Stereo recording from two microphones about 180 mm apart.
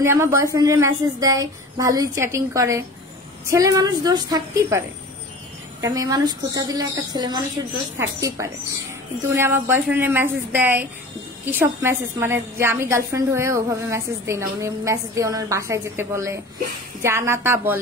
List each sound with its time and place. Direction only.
0.0 s a woman's voice: 15° right (ahead or behind)